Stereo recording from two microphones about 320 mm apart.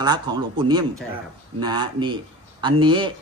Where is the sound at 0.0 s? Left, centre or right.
Centre.